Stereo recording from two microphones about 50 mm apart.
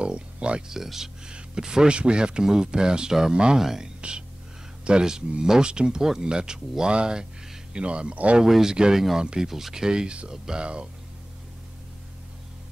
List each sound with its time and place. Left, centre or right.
0.0 s a sound: right
0.7 s speech: centre; by 8.4 s right
8.4 s speech: centre
9.5 s speech: centre